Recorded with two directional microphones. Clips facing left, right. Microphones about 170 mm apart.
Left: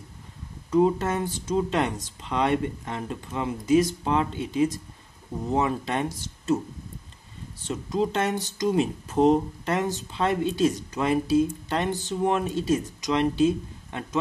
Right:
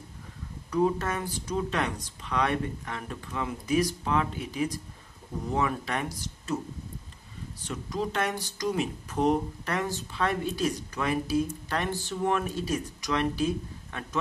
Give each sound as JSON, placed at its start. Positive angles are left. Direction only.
{"t": 0.7, "sound": "speech", "side_deg": 25}
{"t": 7.6, "sound": "speech", "side_deg": 25}